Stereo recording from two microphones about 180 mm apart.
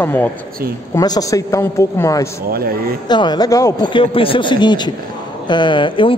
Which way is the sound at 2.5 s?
55° right (ahead or behind).